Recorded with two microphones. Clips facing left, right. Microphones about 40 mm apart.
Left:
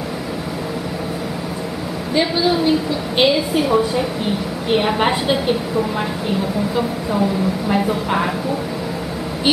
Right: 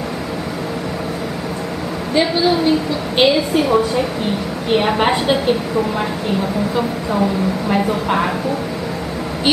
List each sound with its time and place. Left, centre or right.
2.1 s a woman's voice: centre
7.1 s a woman's voice: centre